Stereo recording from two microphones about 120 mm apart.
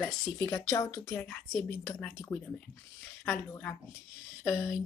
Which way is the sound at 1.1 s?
15° left (ahead or behind).